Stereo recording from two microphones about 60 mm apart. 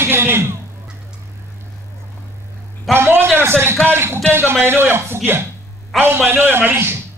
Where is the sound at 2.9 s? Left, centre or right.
Right.